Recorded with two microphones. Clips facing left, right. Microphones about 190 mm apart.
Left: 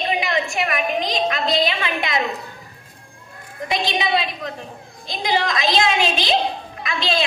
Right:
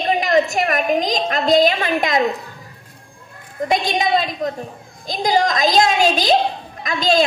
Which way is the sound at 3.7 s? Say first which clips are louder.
Right 3 dB; 45° right (ahead or behind).